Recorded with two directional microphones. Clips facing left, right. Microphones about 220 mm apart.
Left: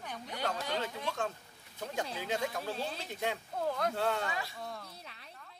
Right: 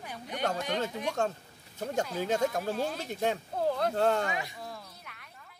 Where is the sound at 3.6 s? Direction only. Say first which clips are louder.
Right 5 dB; 30° right (ahead or behind).